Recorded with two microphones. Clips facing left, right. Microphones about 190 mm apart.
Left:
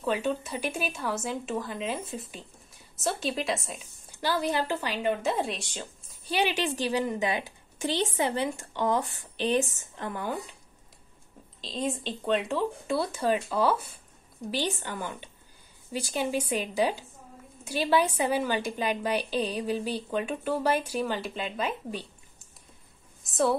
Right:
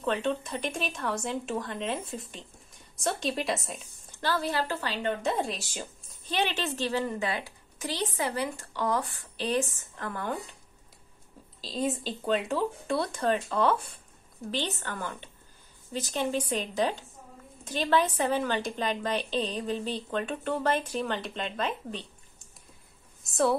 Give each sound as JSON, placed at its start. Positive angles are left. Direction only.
{"t": 0.0, "sound": "speech", "side_deg": 5}
{"t": 4.2, "sound": "a woman's voice", "side_deg": 15}
{"t": 6.2, "sound": "a woman's voice", "side_deg": 10}
{"t": 11.6, "sound": "a woman's voice", "side_deg": -5}
{"t": 23.2, "sound": "a woman's voice", "side_deg": 0}